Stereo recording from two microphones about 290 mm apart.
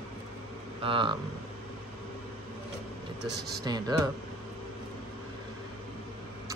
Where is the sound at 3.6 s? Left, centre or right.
Centre.